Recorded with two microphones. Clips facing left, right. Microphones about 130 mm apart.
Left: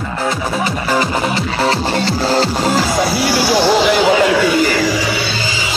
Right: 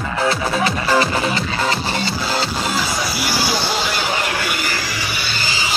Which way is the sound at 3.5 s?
90° left.